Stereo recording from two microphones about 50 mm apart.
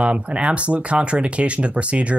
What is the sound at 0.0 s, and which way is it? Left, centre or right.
Speech, right.